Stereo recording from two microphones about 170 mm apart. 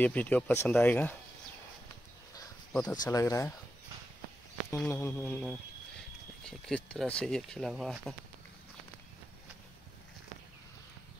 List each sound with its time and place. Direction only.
0.0 s speech: 10° left (ahead or behind)
2.7 s speech: 5° left (ahead or behind)
3.0 s speech: 20° left (ahead or behind)
4.6 s speech: 15° left (ahead or behind)